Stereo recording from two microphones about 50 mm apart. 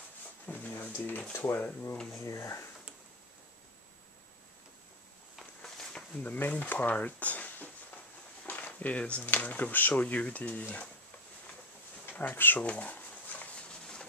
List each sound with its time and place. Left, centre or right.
0.5 s a sound: left
1.3 s speech: left
2.0 s speech: left
6.1 s speech: left
12.1 s speech: left
12.6 s a sound: left